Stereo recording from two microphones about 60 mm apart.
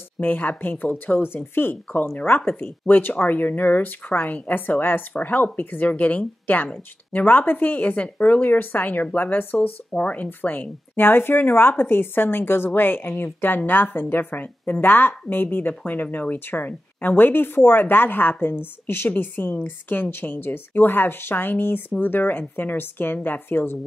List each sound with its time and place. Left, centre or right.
0.2 s a woman's voice: left